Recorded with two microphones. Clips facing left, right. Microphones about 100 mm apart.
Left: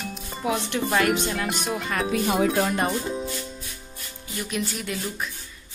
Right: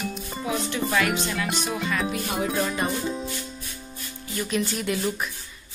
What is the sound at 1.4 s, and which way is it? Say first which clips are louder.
Speech: even; centre (ahead or behind).